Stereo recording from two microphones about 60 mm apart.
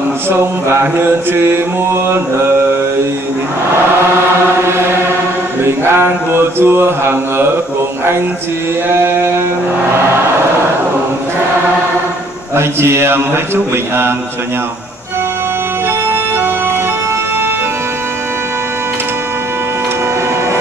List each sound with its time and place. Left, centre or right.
0.9 s mantra: right
5.6 s mantra: right
8.8 s mantra: right
12.5 s a man's voice: right